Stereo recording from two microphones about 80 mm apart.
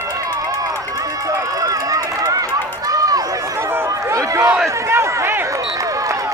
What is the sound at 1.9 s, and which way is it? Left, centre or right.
Run, right.